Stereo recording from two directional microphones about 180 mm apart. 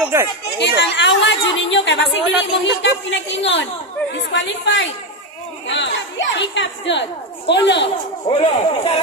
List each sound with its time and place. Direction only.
0.0 s speech: 15° right (ahead or behind)
0.6 s a woman's voice: 75° left (ahead or behind)
8.3 s speech: 30° left (ahead or behind)